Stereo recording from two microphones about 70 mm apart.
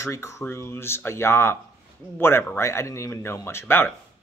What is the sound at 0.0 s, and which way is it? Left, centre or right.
Speech, left.